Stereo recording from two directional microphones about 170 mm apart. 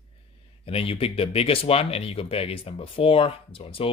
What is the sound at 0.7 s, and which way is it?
Speech, 35° left (ahead or behind).